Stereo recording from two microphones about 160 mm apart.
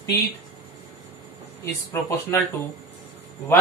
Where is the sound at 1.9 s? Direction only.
20° left (ahead or behind).